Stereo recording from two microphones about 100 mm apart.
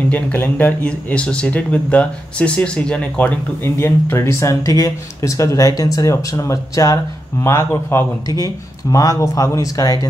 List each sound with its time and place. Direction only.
0.1 s speech: 20° left (ahead or behind)
3.7 s speech: 25° left (ahead or behind)
7.7 s a man's voice: 20° left (ahead or behind)
8.9 s speech: 35° left (ahead or behind)